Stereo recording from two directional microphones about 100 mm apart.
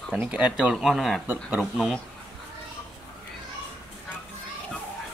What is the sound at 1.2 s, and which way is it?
Speech, 20° right (ahead or behind).